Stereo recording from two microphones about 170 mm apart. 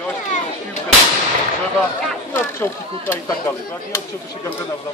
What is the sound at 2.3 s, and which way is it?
Speech, 15° left (ahead or behind).